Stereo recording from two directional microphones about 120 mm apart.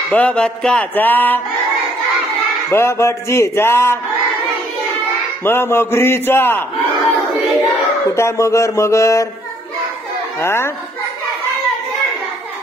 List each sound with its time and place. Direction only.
0.1 s speech: 10° left (ahead or behind)
2.7 s speech: 20° left (ahead or behind)
5.4 s speech: 20° left (ahead or behind)
8.1 s speech: 25° left (ahead or behind)
10.4 s speech: 20° left (ahead or behind)